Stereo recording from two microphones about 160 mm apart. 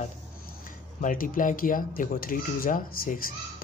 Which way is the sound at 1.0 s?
60° left (ahead or behind).